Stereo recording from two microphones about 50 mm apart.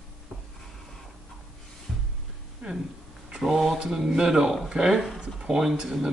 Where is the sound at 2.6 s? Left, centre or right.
Centre.